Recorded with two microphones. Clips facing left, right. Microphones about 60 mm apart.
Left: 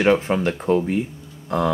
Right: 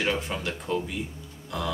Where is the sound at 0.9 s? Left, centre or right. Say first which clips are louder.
Left 11 dB; left.